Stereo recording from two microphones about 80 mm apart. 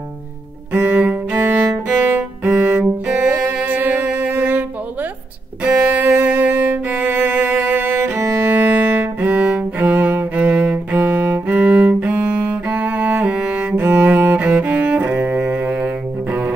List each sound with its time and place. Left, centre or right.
0.7 s music: right
5.8 s music: right
9.8 s cello: right